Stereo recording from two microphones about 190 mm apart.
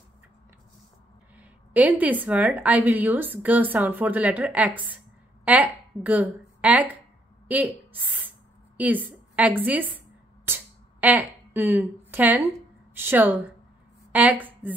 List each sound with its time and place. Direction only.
1.4 s a woman's voice: 10° right (ahead or behind)
7.4 s a sound: 10° right (ahead or behind)
12.9 s a woman's voice: 10° right (ahead or behind)